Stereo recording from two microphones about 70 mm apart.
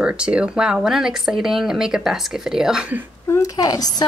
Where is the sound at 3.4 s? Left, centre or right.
Left.